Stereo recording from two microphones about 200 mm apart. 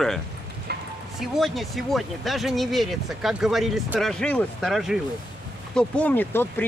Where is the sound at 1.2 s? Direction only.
Centre (ahead or behind).